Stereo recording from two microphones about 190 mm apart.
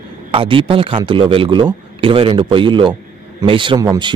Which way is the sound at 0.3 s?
30° right (ahead or behind).